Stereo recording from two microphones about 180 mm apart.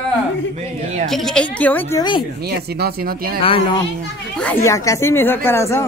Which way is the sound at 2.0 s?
25° left (ahead or behind).